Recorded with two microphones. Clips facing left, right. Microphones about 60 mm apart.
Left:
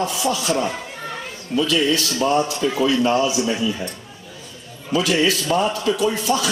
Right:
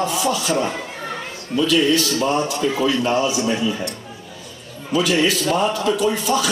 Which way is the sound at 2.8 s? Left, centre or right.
Right.